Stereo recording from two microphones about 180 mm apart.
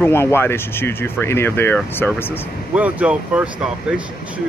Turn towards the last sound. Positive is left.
turn(degrees=-5)  # may be behind; listen again after turning